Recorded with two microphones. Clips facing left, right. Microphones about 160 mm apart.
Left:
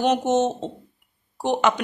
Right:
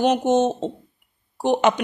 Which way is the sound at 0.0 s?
10° right (ahead or behind).